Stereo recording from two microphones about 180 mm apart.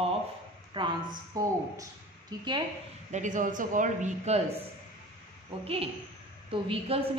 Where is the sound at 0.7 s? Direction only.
25° right (ahead or behind).